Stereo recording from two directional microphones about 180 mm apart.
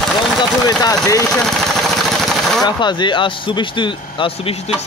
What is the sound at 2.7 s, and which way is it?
Speech, 25° left (ahead or behind).